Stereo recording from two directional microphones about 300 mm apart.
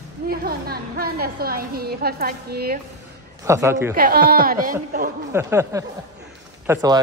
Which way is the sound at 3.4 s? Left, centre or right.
Centre.